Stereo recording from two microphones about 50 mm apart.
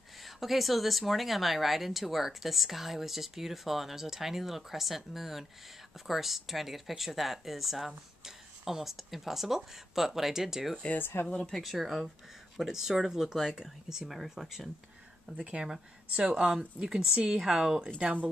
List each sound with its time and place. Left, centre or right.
0.2 s speech: centre
11.0 s speech: left
11.2 s speech: centre
11.5 s speech: centre
18.0 s speech: right